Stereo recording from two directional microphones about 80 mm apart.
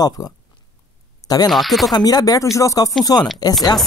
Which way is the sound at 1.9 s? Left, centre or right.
Left.